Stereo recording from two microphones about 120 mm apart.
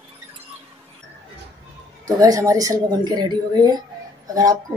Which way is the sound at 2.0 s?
30° right (ahead or behind).